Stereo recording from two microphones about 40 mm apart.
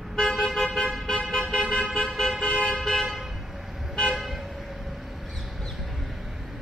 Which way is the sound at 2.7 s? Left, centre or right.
Centre.